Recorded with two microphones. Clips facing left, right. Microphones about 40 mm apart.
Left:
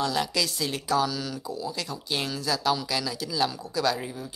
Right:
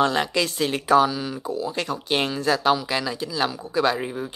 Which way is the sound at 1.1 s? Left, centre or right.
Right.